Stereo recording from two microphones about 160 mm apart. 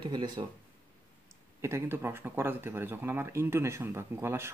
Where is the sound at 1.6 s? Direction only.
15° right (ahead or behind).